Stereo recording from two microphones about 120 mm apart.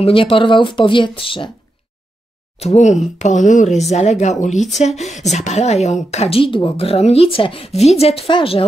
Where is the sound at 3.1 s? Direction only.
85° left.